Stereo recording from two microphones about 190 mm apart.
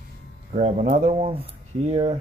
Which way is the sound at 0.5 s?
40° right (ahead or behind).